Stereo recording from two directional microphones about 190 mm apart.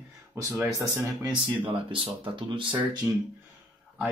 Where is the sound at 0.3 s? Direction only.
15° right (ahead or behind).